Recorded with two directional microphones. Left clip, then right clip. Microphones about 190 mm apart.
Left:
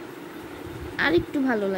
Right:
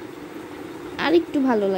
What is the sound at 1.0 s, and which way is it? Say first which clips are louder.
Speech: right 3 dB; 10° right (ahead or behind).